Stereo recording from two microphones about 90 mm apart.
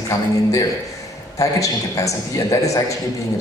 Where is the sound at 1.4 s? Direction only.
40° left (ahead or behind).